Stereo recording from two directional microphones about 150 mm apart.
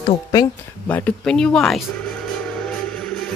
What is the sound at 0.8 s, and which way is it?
Speech, 10° left (ahead or behind).